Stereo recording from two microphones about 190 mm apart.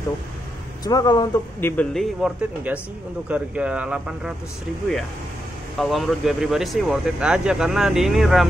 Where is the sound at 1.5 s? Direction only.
10° left (ahead or behind).